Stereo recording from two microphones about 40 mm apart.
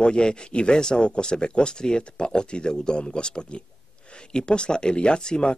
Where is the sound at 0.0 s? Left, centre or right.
Left.